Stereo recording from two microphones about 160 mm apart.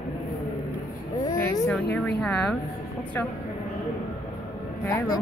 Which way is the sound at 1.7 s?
5° left (ahead or behind).